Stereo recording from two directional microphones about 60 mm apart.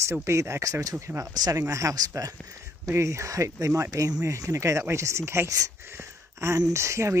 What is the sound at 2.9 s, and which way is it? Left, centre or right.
Speech, right.